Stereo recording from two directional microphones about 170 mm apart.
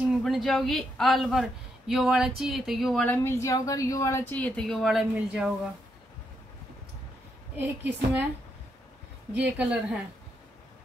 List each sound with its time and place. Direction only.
0.2 s a woman's voice: centre (ahead or behind)
3.2 s speech: 15° left (ahead or behind); by 5.5 s centre (ahead or behind)
7.5 s a woman's voice: 10° right (ahead or behind)
9.3 s a woman's voice: 10° right (ahead or behind)